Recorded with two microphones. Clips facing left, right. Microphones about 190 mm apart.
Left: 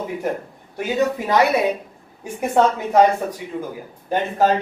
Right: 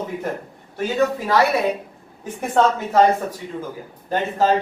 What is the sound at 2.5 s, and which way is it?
Speech, 10° left (ahead or behind).